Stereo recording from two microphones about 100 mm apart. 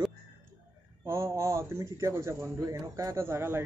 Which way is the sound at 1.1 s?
30° right (ahead or behind).